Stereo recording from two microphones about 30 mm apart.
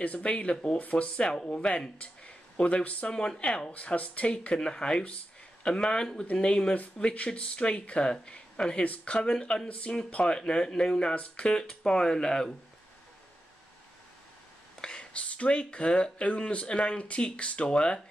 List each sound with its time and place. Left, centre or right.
0.0 s speech: left
0.7 s speech: left
1.2 s speech: left
2.0 s speech: left
3.1 s speech: left
3.7 s speech: left
4.6 s speech: left
6.7 s speech: left
8.1 s speech: left
9.7 s speech: left
10.1 s speech: left
14.9 s speech: left
17.6 s speech: left